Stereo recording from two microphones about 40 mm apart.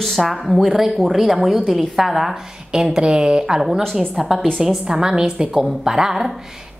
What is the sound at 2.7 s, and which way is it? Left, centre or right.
Speech, centre.